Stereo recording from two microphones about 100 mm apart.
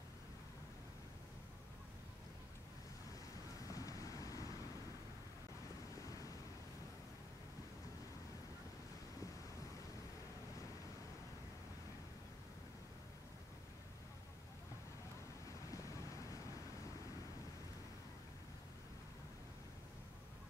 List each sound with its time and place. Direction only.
3.6 s vehicle: 35° left (ahead or behind)